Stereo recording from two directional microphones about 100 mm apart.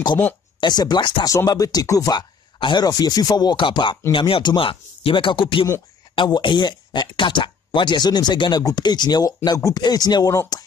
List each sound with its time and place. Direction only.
0.6 s speech: 45° left (ahead or behind)
1.2 s speech: 35° left (ahead or behind)
2.1 s speech: 50° left (ahead or behind)